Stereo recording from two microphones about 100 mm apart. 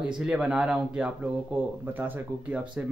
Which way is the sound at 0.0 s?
10° right (ahead or behind).